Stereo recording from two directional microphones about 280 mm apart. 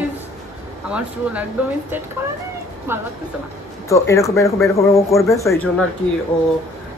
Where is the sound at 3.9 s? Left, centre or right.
Centre.